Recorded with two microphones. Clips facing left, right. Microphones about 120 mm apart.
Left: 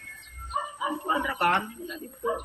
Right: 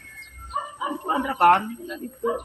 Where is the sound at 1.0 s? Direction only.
40° right (ahead or behind).